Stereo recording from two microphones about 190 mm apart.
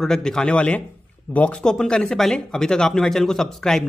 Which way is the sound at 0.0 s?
5° left (ahead or behind).